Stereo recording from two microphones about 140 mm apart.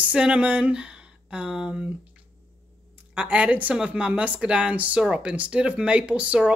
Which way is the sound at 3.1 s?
10° right (ahead or behind).